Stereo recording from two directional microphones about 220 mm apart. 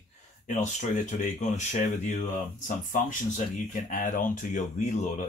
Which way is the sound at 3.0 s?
35° left (ahead or behind).